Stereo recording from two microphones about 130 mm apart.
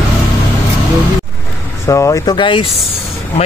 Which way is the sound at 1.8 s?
25° left (ahead or behind).